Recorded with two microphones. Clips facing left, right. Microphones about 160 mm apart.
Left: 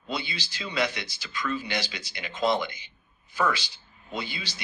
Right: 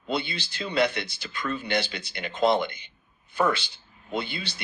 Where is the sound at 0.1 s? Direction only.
55° right (ahead or behind).